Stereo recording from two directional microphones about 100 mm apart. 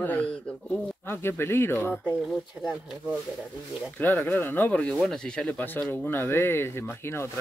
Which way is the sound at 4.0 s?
20° left (ahead or behind).